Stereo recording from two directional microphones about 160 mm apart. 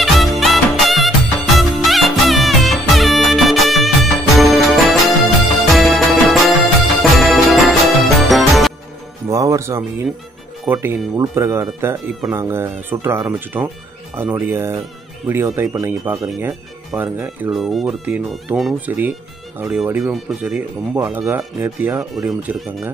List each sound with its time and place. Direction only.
0.0 s music: centre (ahead or behind)
9.3 s music: 20° right (ahead or behind)
10.7 s speech: 15° right (ahead or behind)
22.1 s speech: centre (ahead or behind)